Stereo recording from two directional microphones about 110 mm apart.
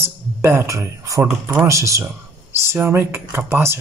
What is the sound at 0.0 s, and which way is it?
A man's voice, 25° right (ahead or behind).